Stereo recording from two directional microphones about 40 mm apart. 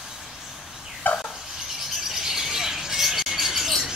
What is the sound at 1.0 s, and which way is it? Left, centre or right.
Turkey, left.